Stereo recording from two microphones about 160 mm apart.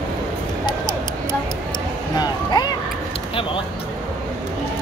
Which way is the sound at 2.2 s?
25° left (ahead or behind).